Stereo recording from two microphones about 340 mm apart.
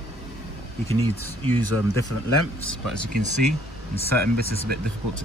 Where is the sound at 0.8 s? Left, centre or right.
Centre.